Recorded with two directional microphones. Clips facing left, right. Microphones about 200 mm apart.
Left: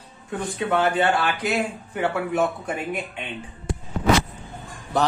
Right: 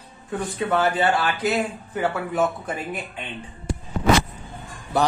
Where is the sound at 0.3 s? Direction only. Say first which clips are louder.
Even; centre (ahead or behind).